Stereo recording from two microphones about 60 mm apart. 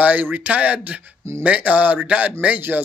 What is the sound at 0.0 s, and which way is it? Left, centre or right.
Speech, right.